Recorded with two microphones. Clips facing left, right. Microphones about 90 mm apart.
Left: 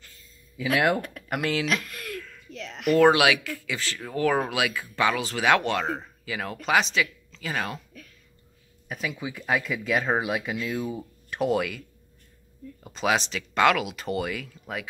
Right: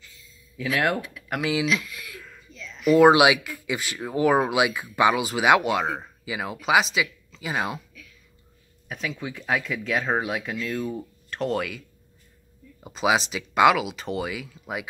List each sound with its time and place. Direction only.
0.0 s a sound: 50° left (ahead or behind)
0.7 s speech: centre (ahead or behind)
1.7 s speech: 55° left (ahead or behind)
2.1 s a sound: 10° right (ahead or behind)
2.5 s speech: 65° left (ahead or behind)
3.0 s speech: 15° right (ahead or behind)
8.8 s speech: 5° left (ahead or behind)
12.8 s speech: 5° right (ahead or behind)